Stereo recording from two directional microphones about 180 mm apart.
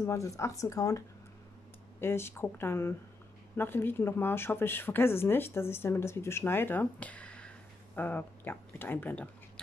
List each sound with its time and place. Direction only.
0.0 s speech: 20° left (ahead or behind)